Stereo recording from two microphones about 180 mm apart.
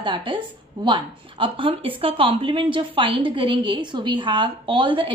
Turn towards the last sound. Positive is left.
turn(degrees=-30)  # may be behind; listen again after turning